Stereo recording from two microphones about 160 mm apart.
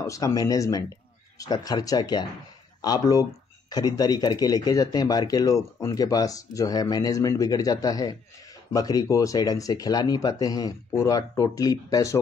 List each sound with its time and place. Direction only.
0.0 s speech: 20° left (ahead or behind)